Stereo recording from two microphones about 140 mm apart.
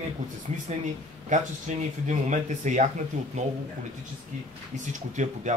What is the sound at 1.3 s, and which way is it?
Speech, 60° right (ahead or behind).